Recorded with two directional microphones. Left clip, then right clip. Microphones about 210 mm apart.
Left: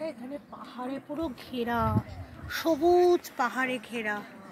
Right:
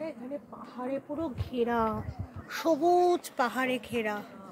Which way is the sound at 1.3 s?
45° right (ahead or behind).